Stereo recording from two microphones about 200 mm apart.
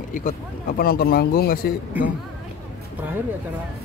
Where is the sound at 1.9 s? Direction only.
10° right (ahead or behind).